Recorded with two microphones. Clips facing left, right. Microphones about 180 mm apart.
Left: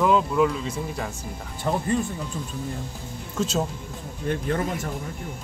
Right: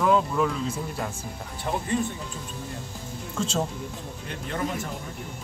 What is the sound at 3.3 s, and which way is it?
Speech, 5° left (ahead or behind).